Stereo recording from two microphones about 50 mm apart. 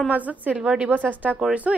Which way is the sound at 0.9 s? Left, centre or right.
Right.